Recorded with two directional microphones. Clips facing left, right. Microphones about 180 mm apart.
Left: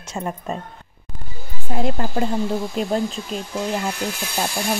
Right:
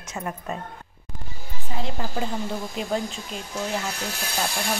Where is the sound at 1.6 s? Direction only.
55° left (ahead or behind).